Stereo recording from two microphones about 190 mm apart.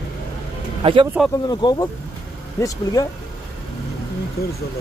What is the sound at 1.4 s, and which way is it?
Speech, 20° left (ahead or behind).